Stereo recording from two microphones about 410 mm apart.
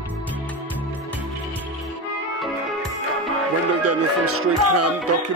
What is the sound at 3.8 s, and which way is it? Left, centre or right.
Music, right.